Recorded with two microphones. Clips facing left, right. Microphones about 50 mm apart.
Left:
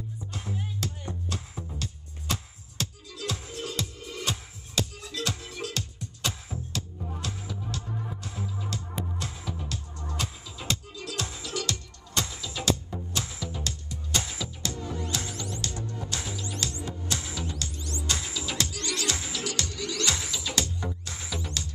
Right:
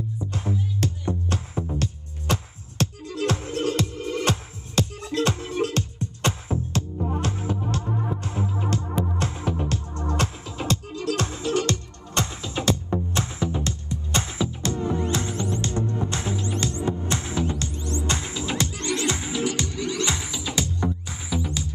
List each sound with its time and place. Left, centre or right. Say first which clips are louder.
0.3 s music: right 7 dB; right; by 21.6 s centre